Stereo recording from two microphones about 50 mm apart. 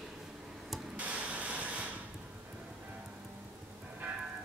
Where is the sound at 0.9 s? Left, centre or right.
Right.